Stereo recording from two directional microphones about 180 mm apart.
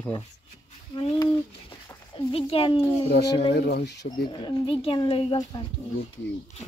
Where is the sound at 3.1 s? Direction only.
65° left (ahead or behind).